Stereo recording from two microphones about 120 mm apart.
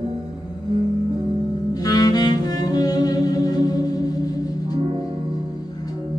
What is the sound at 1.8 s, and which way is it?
Music, 30° left (ahead or behind).